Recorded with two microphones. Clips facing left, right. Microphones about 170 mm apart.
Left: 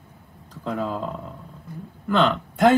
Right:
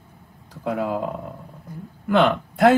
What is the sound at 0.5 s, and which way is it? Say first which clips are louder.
Speech: right 3 dB; 10° right (ahead or behind).